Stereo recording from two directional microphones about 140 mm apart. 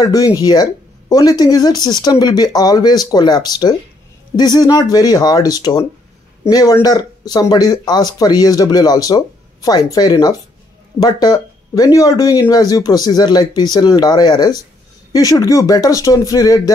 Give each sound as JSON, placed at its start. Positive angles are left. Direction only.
{"t": 0.0, "sound": "speech", "side_deg": 25}